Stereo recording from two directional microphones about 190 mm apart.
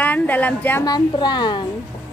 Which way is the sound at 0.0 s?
10° left (ahead or behind).